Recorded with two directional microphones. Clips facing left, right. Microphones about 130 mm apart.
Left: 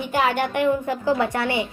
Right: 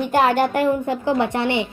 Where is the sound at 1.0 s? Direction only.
25° right (ahead or behind).